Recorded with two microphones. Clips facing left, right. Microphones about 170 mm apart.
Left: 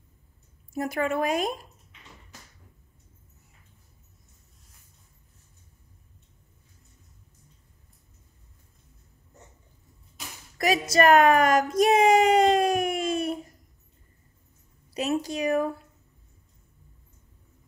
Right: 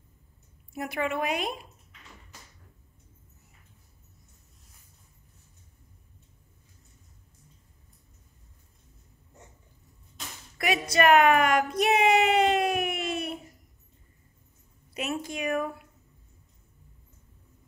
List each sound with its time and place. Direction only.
0.7 s a woman's voice: 45° left (ahead or behind)
10.6 s a sound: 40° left (ahead or behind)
15.0 s a woman's voice: 35° left (ahead or behind)